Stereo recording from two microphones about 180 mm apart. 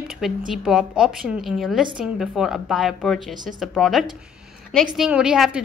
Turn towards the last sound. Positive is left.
turn(degrees=-5)  # may be behind; listen again after turning